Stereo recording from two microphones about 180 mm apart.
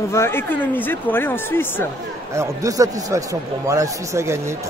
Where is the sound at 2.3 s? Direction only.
15° right (ahead or behind).